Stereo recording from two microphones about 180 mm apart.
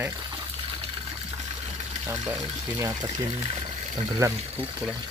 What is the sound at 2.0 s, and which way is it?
Speech, 10° right (ahead or behind).